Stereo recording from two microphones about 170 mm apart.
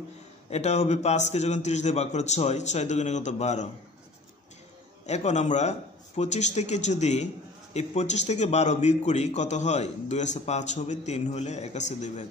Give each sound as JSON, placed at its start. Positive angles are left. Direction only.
{"t": 0.5, "sound": "a man's voice", "side_deg": 40}
{"t": 5.0, "sound": "a man's voice", "side_deg": 40}